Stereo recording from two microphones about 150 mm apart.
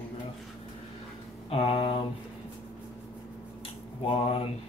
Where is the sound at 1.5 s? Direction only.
35° left (ahead or behind).